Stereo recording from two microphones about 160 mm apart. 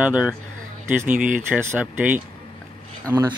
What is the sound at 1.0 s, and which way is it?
Speech, 55° right (ahead or behind).